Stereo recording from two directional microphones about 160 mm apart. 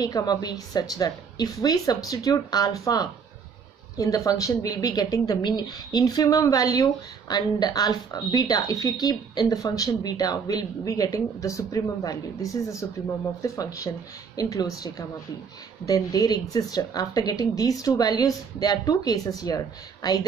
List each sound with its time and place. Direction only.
0.0 s a woman's voice: 25° left (ahead or behind)